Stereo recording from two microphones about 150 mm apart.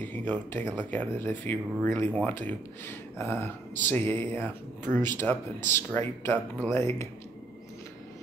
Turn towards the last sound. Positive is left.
turn(degrees=10)  # may be behind; listen again after turning